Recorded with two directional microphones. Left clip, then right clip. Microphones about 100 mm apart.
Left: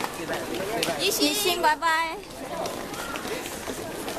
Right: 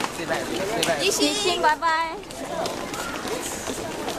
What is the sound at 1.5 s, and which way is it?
Music, 35° left (ahead or behind).